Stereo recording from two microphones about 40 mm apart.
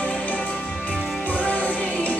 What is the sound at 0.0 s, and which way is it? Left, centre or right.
Music, left.